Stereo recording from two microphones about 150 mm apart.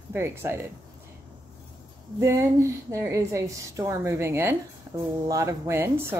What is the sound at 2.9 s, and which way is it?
A woman's voice, 20° right (ahead or behind).